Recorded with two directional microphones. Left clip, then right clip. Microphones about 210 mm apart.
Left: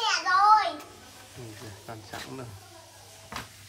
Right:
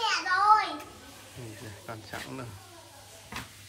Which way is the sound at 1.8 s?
5° left (ahead or behind).